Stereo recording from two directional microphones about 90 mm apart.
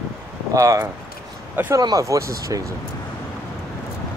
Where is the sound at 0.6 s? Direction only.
35° right (ahead or behind).